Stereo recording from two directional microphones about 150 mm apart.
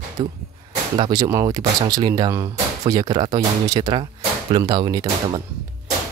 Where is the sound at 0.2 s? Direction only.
30° right (ahead or behind).